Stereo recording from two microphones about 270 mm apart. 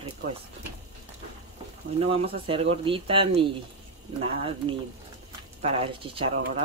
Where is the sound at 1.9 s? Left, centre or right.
Right.